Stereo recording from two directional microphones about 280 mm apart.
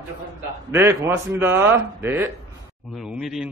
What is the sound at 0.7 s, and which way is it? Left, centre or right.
A man's voice, centre.